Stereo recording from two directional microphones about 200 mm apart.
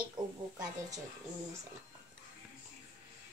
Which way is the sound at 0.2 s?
20° right (ahead or behind).